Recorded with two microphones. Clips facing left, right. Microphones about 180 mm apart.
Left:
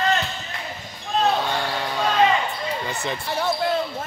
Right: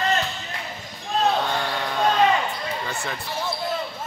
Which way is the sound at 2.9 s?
20° left (ahead or behind).